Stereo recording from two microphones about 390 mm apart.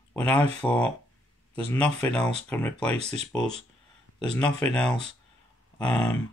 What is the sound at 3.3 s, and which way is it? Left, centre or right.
Speech, centre.